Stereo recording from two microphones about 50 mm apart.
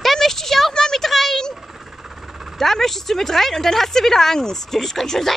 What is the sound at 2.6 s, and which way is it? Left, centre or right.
Speech, centre.